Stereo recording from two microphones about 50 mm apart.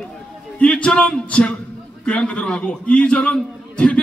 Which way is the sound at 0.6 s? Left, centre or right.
Left.